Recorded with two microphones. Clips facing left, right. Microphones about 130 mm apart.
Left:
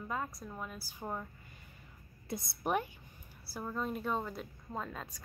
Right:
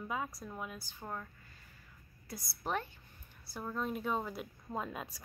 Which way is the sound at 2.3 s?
25° left (ahead or behind).